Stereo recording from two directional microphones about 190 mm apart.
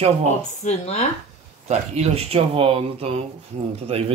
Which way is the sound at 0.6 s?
35° left (ahead or behind).